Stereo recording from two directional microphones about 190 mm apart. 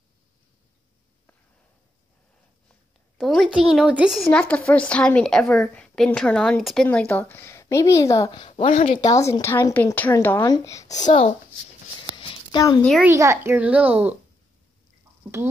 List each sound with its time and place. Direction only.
3.2 s a woman's voice: centre (ahead or behind); by 10.8 s 15° left (ahead or behind)
11.1 s speech: 30° left (ahead or behind)
12.2 s a sound: 25° left (ahead or behind)
13.0 s a child's voice: 15° right (ahead or behind)